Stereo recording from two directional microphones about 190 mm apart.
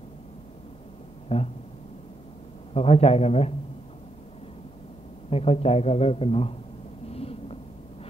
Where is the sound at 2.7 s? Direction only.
35° left (ahead or behind).